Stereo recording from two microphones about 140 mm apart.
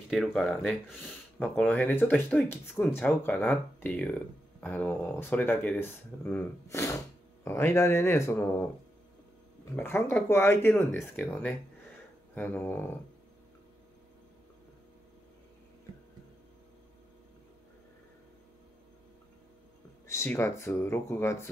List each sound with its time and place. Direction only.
0.1 s speech: 5° left (ahead or behind)
1.6 s speech: 15° left (ahead or behind)
9.8 s speech: 15° left (ahead or behind)
20.1 s speech: 20° left (ahead or behind)